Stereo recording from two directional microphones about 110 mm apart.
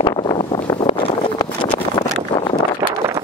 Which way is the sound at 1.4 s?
40° left (ahead or behind).